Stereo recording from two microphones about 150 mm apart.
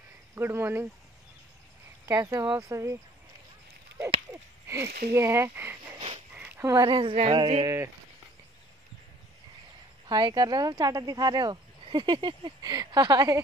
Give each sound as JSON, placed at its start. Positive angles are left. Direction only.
{"t": 0.3, "sound": "speech", "side_deg": -15}
{"t": 2.0, "sound": "speech", "side_deg": -20}
{"t": 4.0, "sound": "a sound", "side_deg": -15}
{"t": 5.1, "sound": "speech", "side_deg": -15}
{"t": 5.9, "sound": "a sound", "side_deg": -35}
{"t": 6.3, "sound": "a sound", "side_deg": -15}
{"t": 6.9, "sound": "a woman's voice", "side_deg": -30}
{"t": 7.6, "sound": "speech", "side_deg": -15}
{"t": 10.0, "sound": "speech", "side_deg": -25}